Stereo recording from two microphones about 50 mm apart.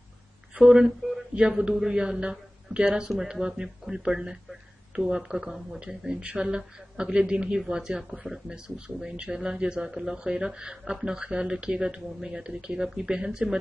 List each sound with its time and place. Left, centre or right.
0.7 s speech: centre
1.3 s speech: centre